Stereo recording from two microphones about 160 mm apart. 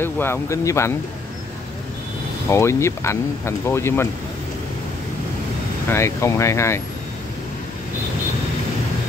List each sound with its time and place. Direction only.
0.0 s speech: 15° left (ahead or behind)
2.5 s speech: 15° left (ahead or behind)
5.9 s speech: 15° left (ahead or behind)